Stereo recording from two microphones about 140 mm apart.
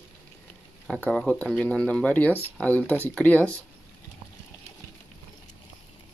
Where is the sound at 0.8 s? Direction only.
5° left (ahead or behind).